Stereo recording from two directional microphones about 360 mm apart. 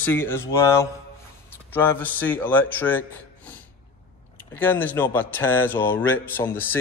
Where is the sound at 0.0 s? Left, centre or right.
Centre.